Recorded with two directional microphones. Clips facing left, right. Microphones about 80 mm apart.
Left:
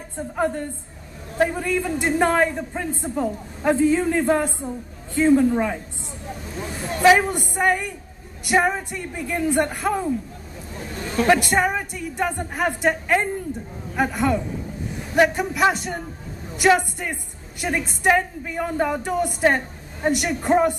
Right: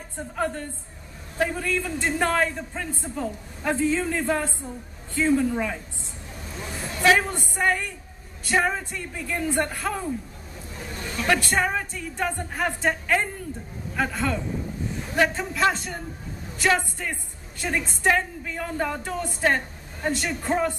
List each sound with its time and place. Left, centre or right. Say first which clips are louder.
0.4 s a man's voice: left 4 dB; centre
7.0 s a man's voice: left 5 dB; centre
11.2 s a man's voice: left 4 dB; centre